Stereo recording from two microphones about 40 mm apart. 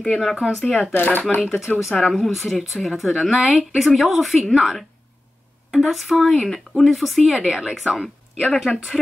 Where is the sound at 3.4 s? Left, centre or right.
Centre.